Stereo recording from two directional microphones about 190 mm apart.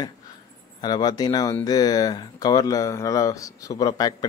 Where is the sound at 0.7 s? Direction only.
20° left (ahead or behind).